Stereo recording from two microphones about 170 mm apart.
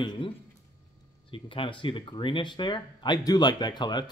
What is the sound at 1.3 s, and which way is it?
Speech, 30° left (ahead or behind).